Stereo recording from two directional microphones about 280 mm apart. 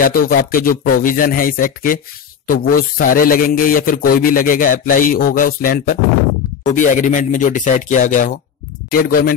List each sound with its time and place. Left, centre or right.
0.0 s a man's voice: left